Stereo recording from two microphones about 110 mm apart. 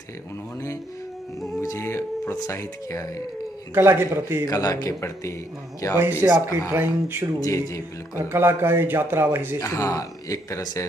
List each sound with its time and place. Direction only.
1.6 s speech: 25° left (ahead or behind)
3.7 s a man's voice: 20° right (ahead or behind)
4.5 s a man's voice: 30° left (ahead or behind)
5.9 s a man's voice: 20° right (ahead or behind)
7.3 s a man's voice: 30° left (ahead or behind)
8.2 s a man's voice: 20° right (ahead or behind)
9.6 s speech: 30° left (ahead or behind)